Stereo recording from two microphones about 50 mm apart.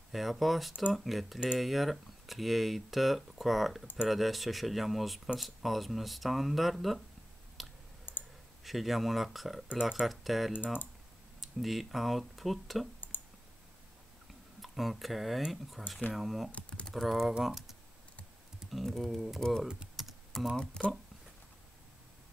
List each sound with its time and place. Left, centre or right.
0.1 s speech: centre
7.6 s clicking: centre
8.1 s clicking: left
8.6 s speech: centre
9.7 s speech: centre
10.0 s speech: centre
13.1 s clicking: left
14.6 s speech: centre
16.5 s speech: left
16.9 s speech: centre
18.6 s speech: centre
20.0 s typing: centre
20.8 s speech: centre